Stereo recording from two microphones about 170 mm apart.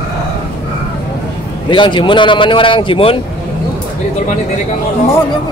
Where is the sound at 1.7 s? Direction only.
30° left (ahead or behind).